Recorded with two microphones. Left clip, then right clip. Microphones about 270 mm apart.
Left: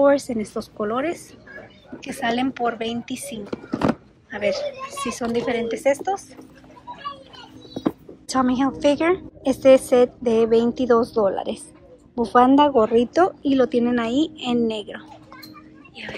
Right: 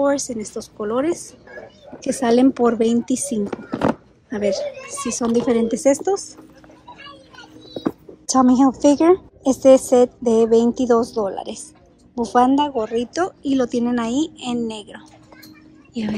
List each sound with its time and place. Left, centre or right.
0.0 s a woman's voice: centre
8.3 s a woman's voice: centre